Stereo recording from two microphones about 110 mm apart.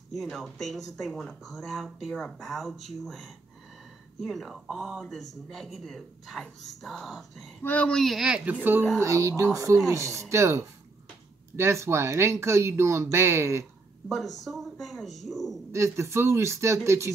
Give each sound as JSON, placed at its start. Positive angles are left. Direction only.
{"t": 0.1, "sound": "speech", "side_deg": 0}
{"t": 7.6, "sound": "speech", "side_deg": 10}
{"t": 9.0, "sound": "speech", "side_deg": -30}
{"t": 14.0, "sound": "speech", "side_deg": 0}
{"t": 15.7, "sound": "speech", "side_deg": -25}